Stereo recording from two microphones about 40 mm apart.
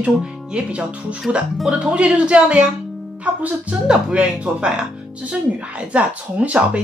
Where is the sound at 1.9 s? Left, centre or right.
Right.